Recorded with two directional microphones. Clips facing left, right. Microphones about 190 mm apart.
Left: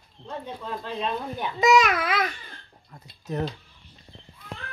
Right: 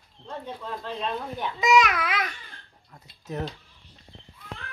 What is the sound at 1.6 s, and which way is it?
Speech, 45° left (ahead or behind).